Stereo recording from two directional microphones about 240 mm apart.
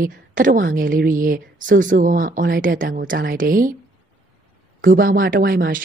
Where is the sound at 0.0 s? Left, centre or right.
Right.